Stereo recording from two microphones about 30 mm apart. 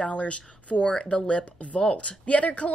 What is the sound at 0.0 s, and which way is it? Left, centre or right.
Speech, left.